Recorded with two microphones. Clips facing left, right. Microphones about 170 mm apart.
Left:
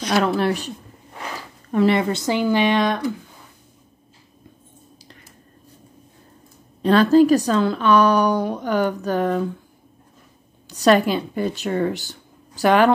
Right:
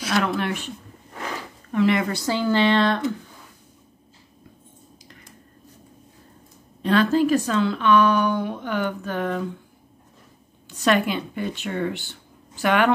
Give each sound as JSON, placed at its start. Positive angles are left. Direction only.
{"t": 0.4, "sound": "speech", "side_deg": 35}
{"t": 1.7, "sound": "speech", "side_deg": 35}
{"t": 6.8, "sound": "speech", "side_deg": 35}
{"t": 10.7, "sound": "speech", "side_deg": 35}